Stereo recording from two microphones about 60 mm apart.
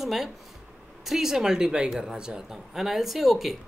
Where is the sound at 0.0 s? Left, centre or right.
Centre.